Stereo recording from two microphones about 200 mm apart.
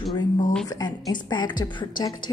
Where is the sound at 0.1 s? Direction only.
20° left (ahead or behind).